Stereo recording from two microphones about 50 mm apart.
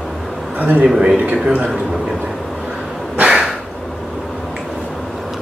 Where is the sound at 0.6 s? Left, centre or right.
Right.